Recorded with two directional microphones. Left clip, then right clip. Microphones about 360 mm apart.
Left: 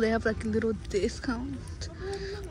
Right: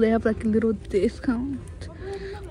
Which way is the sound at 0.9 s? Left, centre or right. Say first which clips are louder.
Right 6 dB; centre.